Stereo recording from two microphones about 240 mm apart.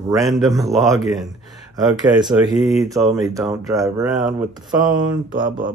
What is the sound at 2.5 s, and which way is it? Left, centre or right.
Speech, centre.